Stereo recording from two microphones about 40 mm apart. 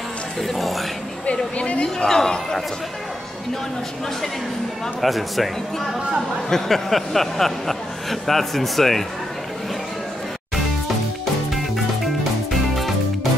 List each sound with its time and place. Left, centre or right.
0.4 s speech: centre
1.2 s speech: left
2.0 s speech: centre
5.0 s speech: centre
11.5 s music: centre